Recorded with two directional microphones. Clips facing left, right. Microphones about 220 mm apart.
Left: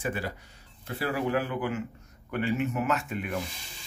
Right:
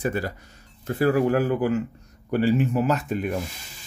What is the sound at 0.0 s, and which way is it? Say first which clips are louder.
Speech: right 6 dB; 40° right (ahead or behind).